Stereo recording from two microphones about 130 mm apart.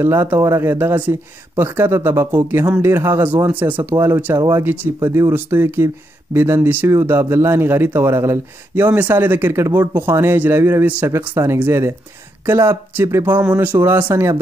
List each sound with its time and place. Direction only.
0.0 s speech: 20° right (ahead or behind)